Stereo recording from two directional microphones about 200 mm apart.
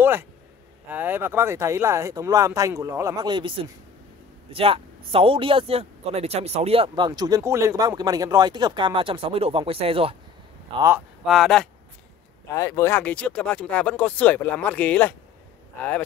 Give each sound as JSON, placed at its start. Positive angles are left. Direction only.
{"t": 0.0, "sound": "speech", "side_deg": -10}
{"t": 11.2, "sound": "speech", "side_deg": 0}
{"t": 12.4, "sound": "speech", "side_deg": 15}